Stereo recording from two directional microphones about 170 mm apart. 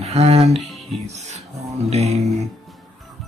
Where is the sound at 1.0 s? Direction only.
40° right (ahead or behind).